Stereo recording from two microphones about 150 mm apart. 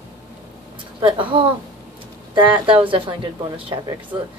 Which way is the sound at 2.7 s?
35° right (ahead or behind).